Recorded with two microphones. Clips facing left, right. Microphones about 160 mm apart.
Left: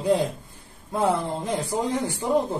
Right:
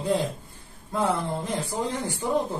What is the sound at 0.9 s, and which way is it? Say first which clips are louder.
A woman's voice: left 2 dB; 15° left (ahead or behind).